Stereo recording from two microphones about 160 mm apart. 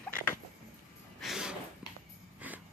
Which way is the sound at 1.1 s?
5° right (ahead or behind).